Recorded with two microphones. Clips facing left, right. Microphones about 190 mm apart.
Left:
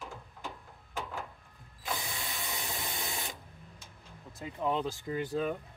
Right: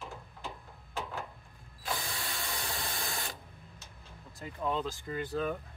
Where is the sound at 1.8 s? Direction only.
20° left (ahead or behind).